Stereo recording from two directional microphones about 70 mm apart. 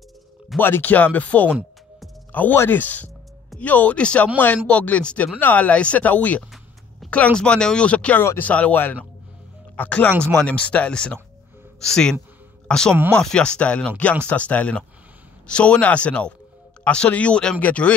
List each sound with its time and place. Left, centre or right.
0.6 s speech: left
2.3 s speech: left; by 12.9 s centre
12.9 s speech: right
13.2 s speech: centre